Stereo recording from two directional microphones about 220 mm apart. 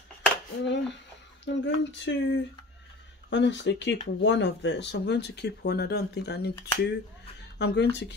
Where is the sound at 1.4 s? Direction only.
55° left (ahead or behind).